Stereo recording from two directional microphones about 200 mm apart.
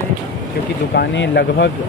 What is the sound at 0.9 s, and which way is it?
Speech, 60° left (ahead or behind).